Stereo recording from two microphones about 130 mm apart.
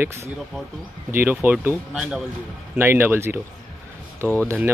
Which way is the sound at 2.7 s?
15° right (ahead or behind).